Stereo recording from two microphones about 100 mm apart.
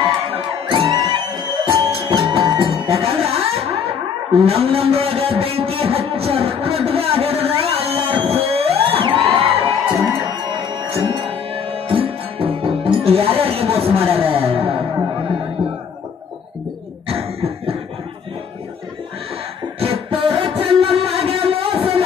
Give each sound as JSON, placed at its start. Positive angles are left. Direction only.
{"t": 0.0, "sound": "music", "side_deg": -55}
{"t": 1.5, "sound": "music", "side_deg": -50}
{"t": 1.9, "sound": "music", "side_deg": -70}
{"t": 4.3, "sound": "a sound", "side_deg": -80}
{"t": 9.3, "sound": "crowd", "side_deg": -70}
{"t": 10.2, "sound": "music", "side_deg": -55}
{"t": 17.1, "sound": "cough", "side_deg": -75}
{"t": 19.8, "sound": "a sound", "side_deg": -70}